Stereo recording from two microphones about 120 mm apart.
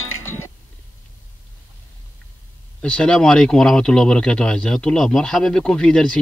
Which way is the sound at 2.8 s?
10° left (ahead or behind).